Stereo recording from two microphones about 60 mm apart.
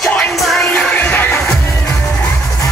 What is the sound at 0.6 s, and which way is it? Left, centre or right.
Music, left.